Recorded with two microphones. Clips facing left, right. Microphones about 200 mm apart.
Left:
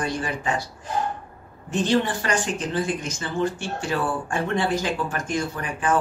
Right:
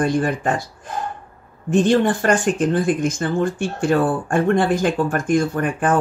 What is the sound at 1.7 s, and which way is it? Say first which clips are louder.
Speech: right 6 dB; 50° right (ahead or behind).